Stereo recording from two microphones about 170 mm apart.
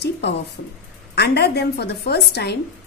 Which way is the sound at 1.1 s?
75° left (ahead or behind).